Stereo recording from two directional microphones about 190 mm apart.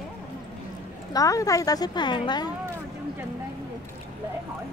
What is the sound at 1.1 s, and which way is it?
Speech, 20° left (ahead or behind).